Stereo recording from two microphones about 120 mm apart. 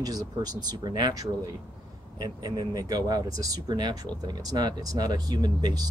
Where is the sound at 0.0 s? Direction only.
30° right (ahead or behind).